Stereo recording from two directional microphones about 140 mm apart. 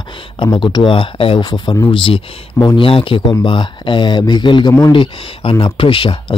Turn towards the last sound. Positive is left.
turn(degrees=40)  # may be behind; listen again after turning